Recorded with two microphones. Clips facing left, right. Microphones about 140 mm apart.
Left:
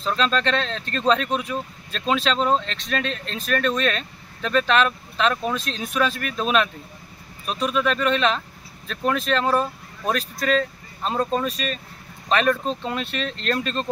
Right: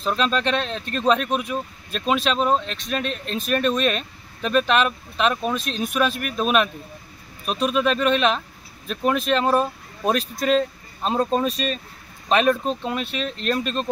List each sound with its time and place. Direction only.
0.0 s speech: 15° right (ahead or behind)